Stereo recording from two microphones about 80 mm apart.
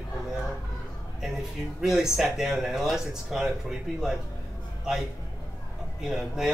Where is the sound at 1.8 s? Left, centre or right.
Centre.